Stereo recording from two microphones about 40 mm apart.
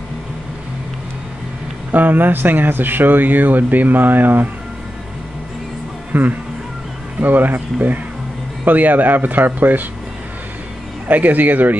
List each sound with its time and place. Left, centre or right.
1.9 s speech: right
6.1 s speech: right
11.1 s speech: right